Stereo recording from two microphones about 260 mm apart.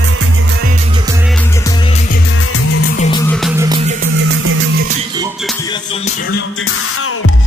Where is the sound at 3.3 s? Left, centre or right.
Centre.